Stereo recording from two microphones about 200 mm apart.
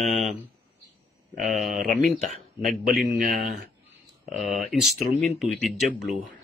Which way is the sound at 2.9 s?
Centre (ahead or behind).